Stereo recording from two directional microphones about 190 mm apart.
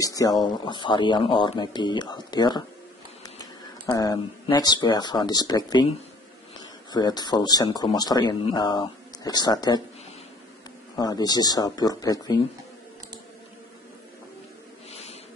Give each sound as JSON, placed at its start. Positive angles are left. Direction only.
{"t": 0.0, "sound": "speech", "side_deg": 20}
{"t": 3.8, "sound": "speech", "side_deg": 20}
{"t": 6.9, "sound": "speech", "side_deg": 20}
{"t": 11.0, "sound": "speech", "side_deg": 20}
{"t": 14.9, "sound": "a sound", "side_deg": 35}